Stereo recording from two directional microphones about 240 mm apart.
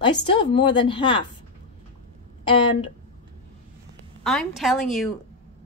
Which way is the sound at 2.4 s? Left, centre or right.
Left.